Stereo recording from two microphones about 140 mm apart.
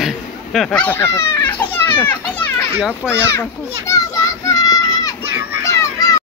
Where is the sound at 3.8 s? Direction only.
20° left (ahead or behind).